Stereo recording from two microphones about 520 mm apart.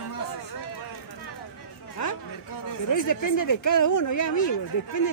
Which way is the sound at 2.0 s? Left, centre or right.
Left.